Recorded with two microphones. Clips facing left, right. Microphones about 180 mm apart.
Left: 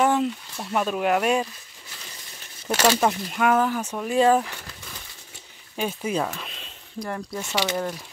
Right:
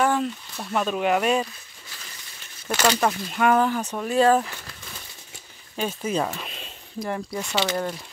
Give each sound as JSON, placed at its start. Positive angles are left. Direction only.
{"t": 0.0, "sound": "a sound", "side_deg": 20}
{"t": 0.6, "sound": "speech", "side_deg": 5}
{"t": 3.0, "sound": "speech", "side_deg": 10}
{"t": 5.8, "sound": "speech", "side_deg": 15}
{"t": 6.2, "sound": "a sound", "side_deg": -10}
{"t": 7.5, "sound": "speech", "side_deg": 10}